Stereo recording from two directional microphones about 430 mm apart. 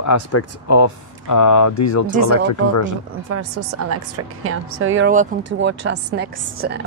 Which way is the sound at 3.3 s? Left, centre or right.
Right.